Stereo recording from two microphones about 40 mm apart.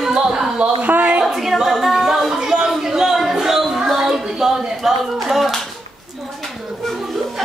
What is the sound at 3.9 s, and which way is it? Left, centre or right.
Clapping, centre.